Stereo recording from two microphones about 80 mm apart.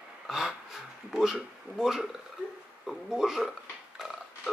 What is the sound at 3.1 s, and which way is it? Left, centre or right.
Speech, centre.